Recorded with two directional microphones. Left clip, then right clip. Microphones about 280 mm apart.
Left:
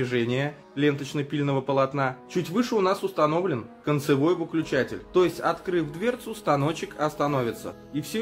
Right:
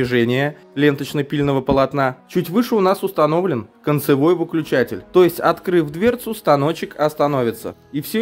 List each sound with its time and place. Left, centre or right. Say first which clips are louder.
0.0 s speech: right 9 dB; right